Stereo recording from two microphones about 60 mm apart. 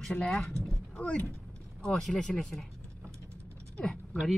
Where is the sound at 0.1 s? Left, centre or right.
Left.